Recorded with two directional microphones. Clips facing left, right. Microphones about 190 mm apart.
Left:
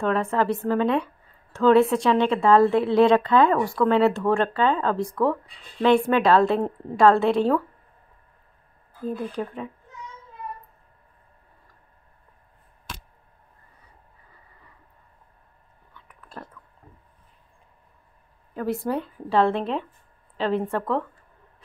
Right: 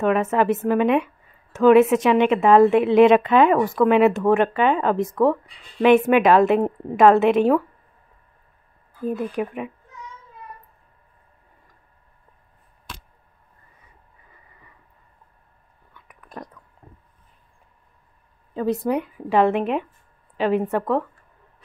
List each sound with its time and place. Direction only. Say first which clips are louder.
0.0 s speech: right 4 dB; 15° right (ahead or behind)
9.0 s speech: right 4 dB; 20° right (ahead or behind)
15.9 s whispering: right 3 dB; 15° right (ahead or behind)
18.5 s speech: right 4 dB; 20° right (ahead or behind)